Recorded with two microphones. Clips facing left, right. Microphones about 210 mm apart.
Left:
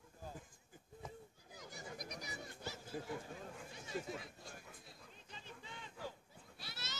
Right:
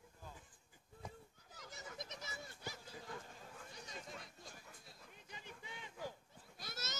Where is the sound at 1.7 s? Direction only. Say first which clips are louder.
Left 2 dB; 25° right (ahead or behind).